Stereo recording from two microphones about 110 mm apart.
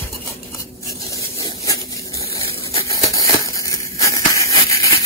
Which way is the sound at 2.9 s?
30° left (ahead or behind).